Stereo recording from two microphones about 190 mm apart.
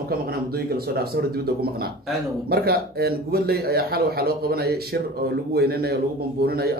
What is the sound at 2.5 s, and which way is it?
A man's voice, 55° right (ahead or behind).